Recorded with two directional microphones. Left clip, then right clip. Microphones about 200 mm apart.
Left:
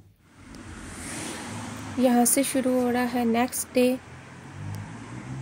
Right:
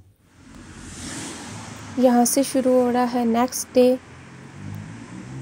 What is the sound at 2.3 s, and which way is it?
A woman's voice, 20° right (ahead or behind).